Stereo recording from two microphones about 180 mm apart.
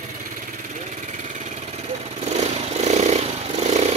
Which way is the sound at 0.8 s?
40° right (ahead or behind).